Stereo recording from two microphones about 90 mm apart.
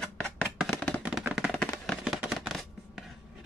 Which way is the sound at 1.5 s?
10° left (ahead or behind).